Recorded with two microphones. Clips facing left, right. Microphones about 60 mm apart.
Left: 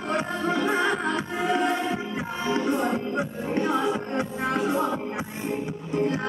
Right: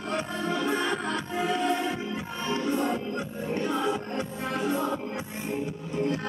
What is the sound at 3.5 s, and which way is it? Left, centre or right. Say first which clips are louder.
Music: left 3 dB; left.